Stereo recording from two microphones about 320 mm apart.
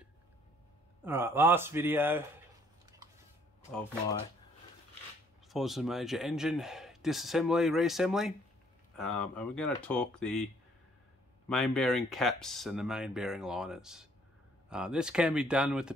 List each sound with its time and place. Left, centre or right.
1.0 s speech: centre
5.5 s speech: centre
11.4 s speech: centre